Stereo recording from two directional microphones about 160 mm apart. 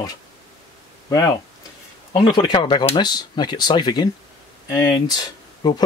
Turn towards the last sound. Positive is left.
turn(degrees=25)  # may be behind; listen again after turning